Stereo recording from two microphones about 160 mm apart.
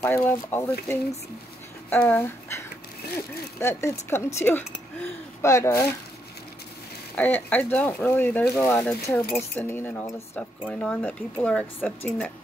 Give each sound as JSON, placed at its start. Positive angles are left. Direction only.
{"t": 0.0, "sound": "speech", "side_deg": 10}
{"t": 7.2, "sound": "speech", "side_deg": 10}